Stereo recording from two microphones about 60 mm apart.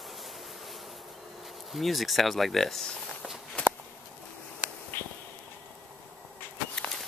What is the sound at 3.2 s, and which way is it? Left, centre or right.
Walk, centre.